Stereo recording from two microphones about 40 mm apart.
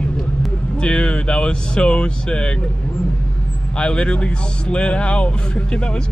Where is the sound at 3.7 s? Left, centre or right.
Left.